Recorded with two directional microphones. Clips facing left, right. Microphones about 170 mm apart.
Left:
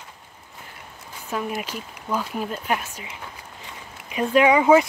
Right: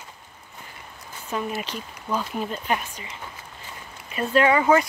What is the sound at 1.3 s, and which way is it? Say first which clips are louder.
Speech: left 1 dB; 5° left (ahead or behind).